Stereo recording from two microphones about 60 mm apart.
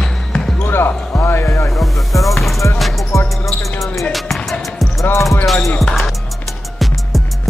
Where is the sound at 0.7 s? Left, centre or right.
Left.